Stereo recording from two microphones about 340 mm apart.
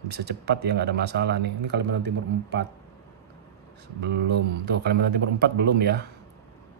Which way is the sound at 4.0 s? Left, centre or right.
Right.